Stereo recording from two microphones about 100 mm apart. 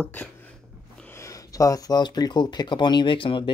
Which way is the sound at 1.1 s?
30° left (ahead or behind).